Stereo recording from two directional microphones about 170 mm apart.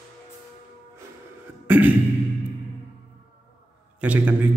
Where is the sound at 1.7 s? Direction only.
10° right (ahead or behind).